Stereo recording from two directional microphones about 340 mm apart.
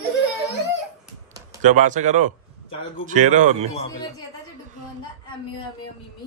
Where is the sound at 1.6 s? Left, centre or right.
Right.